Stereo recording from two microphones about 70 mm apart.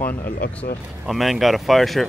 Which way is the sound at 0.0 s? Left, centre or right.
Left.